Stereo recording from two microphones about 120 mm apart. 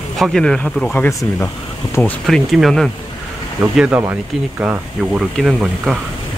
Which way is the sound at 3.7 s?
10° right (ahead or behind).